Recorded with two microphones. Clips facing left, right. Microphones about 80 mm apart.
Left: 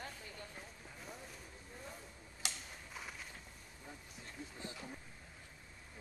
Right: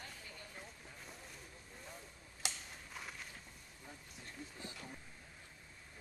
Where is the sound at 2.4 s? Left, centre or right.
Centre.